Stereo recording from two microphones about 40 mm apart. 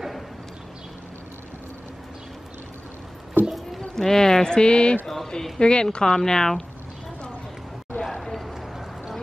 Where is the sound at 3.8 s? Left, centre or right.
Centre.